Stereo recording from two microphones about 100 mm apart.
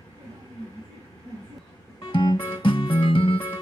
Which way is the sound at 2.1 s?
55° left (ahead or behind).